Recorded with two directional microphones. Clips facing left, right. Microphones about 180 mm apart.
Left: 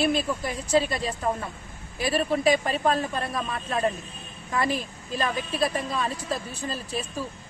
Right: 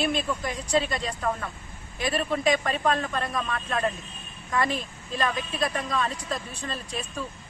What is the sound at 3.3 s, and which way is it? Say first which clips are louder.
Speech: even; 25° left (ahead or behind).